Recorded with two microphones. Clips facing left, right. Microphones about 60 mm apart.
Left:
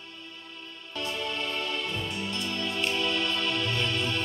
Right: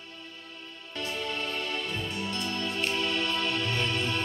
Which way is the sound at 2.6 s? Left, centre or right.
Right.